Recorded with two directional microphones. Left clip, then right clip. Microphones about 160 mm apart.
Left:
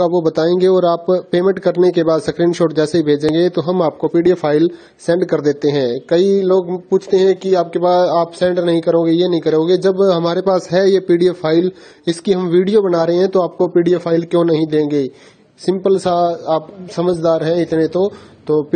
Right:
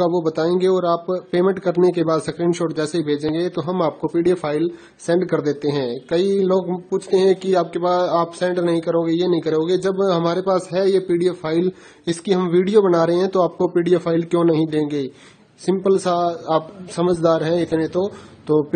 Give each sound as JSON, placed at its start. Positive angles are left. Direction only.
{"t": 0.0, "sound": "speech", "side_deg": 30}